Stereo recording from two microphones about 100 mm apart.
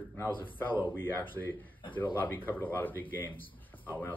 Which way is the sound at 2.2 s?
20° left (ahead or behind).